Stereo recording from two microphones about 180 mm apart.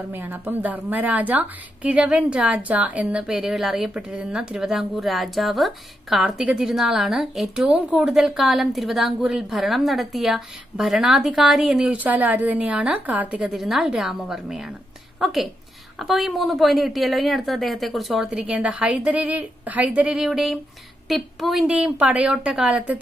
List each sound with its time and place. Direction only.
0.1 s a woman's voice: 10° right (ahead or behind)